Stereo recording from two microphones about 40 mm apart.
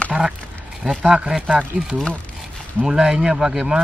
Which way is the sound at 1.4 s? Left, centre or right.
Right.